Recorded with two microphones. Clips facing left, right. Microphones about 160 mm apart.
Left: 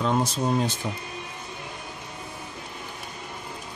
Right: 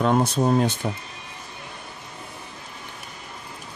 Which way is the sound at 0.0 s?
60° right (ahead or behind).